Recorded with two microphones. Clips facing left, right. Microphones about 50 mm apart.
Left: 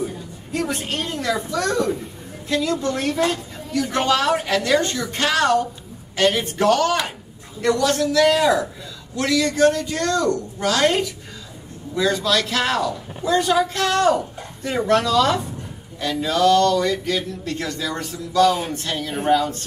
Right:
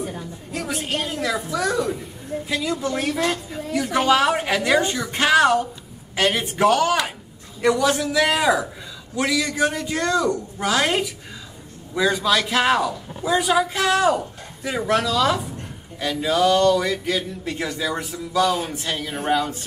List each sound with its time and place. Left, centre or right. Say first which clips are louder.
0.5 s a woman's voice: left 2 dB; centre